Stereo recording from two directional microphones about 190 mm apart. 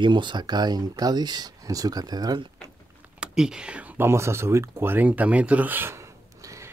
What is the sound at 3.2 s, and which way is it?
Speech, 5° right (ahead or behind).